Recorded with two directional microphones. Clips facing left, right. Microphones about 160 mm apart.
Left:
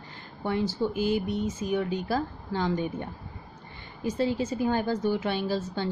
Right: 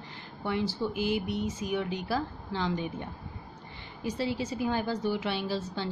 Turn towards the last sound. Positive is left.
turn(degrees=50)  # may be behind; listen again after turning